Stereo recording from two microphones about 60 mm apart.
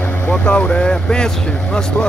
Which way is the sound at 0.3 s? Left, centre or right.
Centre.